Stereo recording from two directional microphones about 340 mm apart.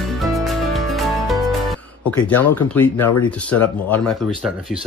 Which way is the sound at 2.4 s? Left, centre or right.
Centre.